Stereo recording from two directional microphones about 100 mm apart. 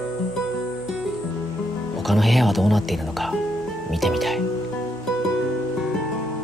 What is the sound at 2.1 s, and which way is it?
Speech, centre (ahead or behind).